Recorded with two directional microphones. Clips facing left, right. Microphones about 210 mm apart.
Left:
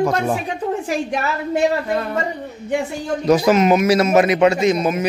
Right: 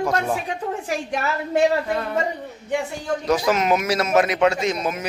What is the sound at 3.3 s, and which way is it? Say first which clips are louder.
A man's voice: left 6 dB; 5° left (ahead or behind).